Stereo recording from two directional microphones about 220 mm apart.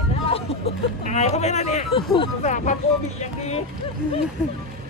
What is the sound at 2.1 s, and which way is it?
Speech, 35° left (ahead or behind).